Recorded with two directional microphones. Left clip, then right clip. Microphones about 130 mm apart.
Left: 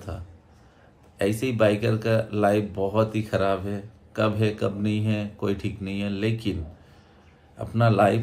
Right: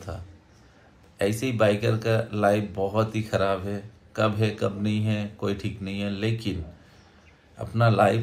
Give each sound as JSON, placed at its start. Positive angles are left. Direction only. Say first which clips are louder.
{"t": 1.4, "sound": "speech", "louder": "left 1 dB", "side_deg": 20}
{"t": 7.5, "sound": "speech", "louder": "even", "side_deg": 20}